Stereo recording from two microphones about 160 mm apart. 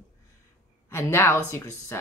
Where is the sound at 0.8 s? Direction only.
15° left (ahead or behind).